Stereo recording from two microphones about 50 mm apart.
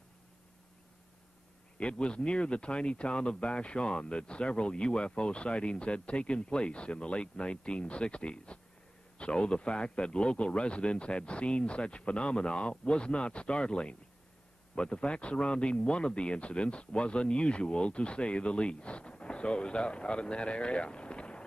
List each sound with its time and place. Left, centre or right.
1.8 s speech: left